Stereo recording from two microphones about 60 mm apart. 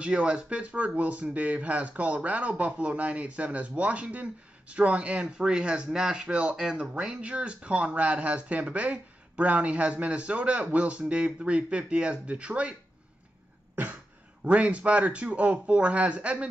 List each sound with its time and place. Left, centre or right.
0.0 s speech: centre
14.4 s speech: centre